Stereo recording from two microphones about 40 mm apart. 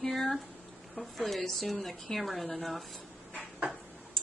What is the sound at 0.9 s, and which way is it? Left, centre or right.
Speech, centre.